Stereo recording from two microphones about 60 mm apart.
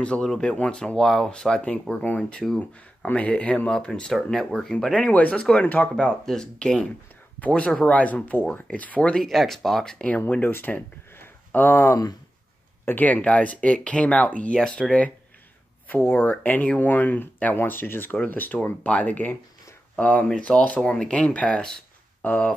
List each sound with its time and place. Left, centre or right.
0.0 s speech: centre
2.4 s speech: centre
3.1 s speech: left
9.1 s speech: centre
9.9 s speech: left
15.9 s speech: left